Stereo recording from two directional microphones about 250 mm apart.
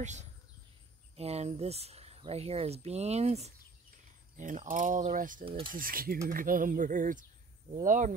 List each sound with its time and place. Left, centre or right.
0.0 s speech: right